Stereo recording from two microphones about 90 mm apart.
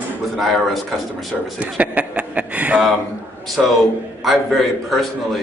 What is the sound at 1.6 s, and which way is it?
Speech, 15° right (ahead or behind).